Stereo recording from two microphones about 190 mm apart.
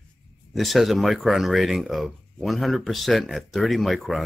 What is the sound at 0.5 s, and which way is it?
Speech, centre (ahead or behind).